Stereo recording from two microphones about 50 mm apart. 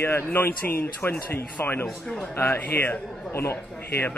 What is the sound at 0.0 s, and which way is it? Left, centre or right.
Speech, left.